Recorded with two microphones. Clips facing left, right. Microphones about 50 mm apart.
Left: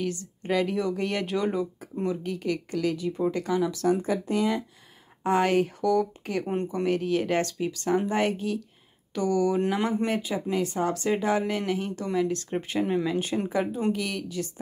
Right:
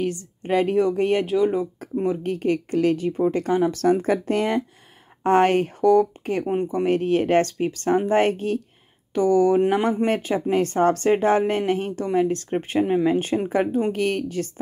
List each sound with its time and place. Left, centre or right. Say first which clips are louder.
0.0 s a woman's voice: right 5 dB; right
1.2 s speech: right 7 dB; centre
2.0 s a woman's voice: right 6 dB; right
3.9 s a woman's voice: right 5 dB; right
6.4 s speech: right 6 dB; centre
6.7 s a woman's voice: right 5 dB; right
10.0 s a woman's voice: right 6 dB; right